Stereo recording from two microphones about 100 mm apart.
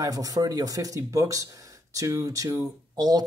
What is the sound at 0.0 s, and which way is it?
Speech, 35° right (ahead or behind).